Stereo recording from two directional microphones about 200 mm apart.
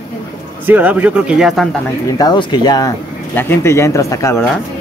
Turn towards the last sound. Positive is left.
turn(degrees=15)  # may be behind; listen again after turning